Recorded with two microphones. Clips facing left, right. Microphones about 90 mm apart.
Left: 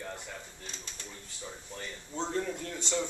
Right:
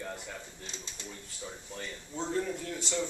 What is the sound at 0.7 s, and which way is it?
Speech, 20° right (ahead or behind).